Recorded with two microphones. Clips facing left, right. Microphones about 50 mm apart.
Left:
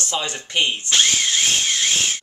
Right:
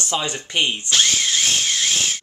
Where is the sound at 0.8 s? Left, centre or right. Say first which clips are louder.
Even; centre.